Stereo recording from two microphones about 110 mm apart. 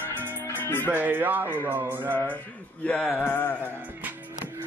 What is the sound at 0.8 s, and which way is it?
Speech, 15° right (ahead or behind).